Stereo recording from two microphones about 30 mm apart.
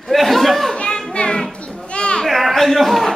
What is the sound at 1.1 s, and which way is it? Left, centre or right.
Speech, left.